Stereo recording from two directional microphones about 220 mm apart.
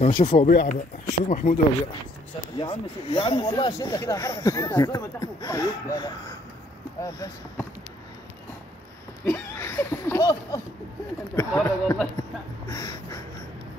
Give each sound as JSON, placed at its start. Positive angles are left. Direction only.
{"t": 0.0, "sound": "speech", "side_deg": 35}
{"t": 0.5, "sound": "speech", "side_deg": 45}
{"t": 1.0, "sound": "speech", "side_deg": 35}
{"t": 2.6, "sound": "speech", "side_deg": 25}
{"t": 9.2, "sound": "speech", "side_deg": 10}
{"t": 12.6, "sound": "a sound", "side_deg": 15}